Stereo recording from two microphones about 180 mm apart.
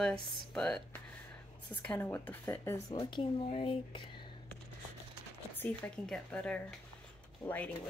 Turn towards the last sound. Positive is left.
turn(degrees=10)  # may be behind; listen again after turning